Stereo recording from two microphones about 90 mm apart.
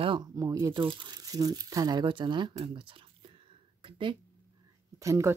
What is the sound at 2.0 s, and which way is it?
Speech, 60° right (ahead or behind).